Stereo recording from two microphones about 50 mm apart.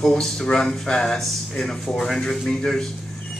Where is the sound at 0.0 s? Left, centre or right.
Centre.